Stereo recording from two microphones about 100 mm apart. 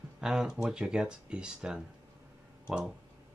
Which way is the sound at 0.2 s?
5° right (ahead or behind).